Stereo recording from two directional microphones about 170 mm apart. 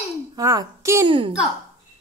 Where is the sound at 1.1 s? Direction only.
30° right (ahead or behind).